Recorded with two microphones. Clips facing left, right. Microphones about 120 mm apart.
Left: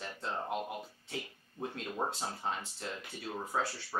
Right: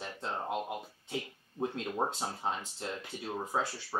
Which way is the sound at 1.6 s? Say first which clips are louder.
Right 4 dB; 25° right (ahead or behind).